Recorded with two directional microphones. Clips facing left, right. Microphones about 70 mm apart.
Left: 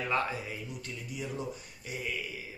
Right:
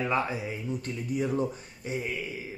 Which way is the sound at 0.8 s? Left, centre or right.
Right.